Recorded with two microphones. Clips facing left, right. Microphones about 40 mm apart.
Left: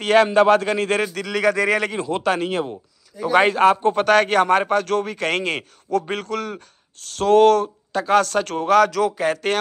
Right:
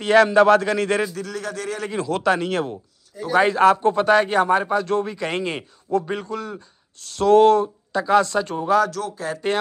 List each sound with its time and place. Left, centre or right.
0.0 s a man's voice: left
1.1 s speech: left
1.9 s a man's voice: left
3.3 s a man's voice: left
3.9 s a man's voice: left
7.2 s a man's voice: left
7.6 s a sound: left
8.1 s a man's voice: left
8.6 s speech: left